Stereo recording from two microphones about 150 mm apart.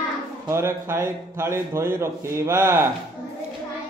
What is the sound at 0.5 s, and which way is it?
A man's voice, 15° right (ahead or behind).